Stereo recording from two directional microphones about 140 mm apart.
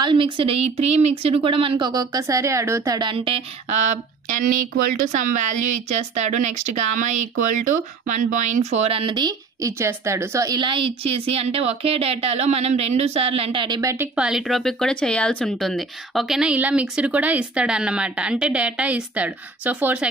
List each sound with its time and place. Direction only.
0.0 s a woman's voice: 40° right (ahead or behind)
5.1 s speech: 60° right (ahead or behind); by 13.7 s 40° right (ahead or behind)
13.7 s a woman's voice: 25° right (ahead or behind)
14.1 s speech: 5° right (ahead or behind)